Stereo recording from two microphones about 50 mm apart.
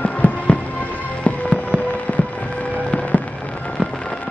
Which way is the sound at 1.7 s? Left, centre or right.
Left.